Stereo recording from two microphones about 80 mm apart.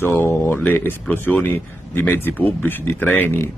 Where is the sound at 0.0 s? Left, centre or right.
Left.